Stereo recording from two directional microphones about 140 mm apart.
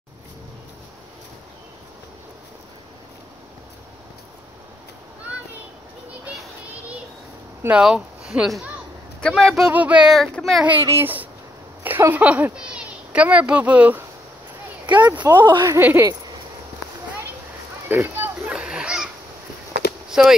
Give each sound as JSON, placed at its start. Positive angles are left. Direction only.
{"t": 6.2, "sound": "child singing", "side_deg": -5}
{"t": 7.6, "sound": "speech", "side_deg": -5}
{"t": 9.7, "sound": "speech", "side_deg": -10}
{"t": 10.6, "sound": "a child's voice", "side_deg": -15}
{"t": 15.4, "sound": "a woman's voice", "side_deg": -35}
{"t": 15.7, "sound": "a child's voice", "side_deg": -15}
{"t": 17.8, "sound": "children playing", "side_deg": -15}
{"t": 20.1, "sound": "a sound", "side_deg": -5}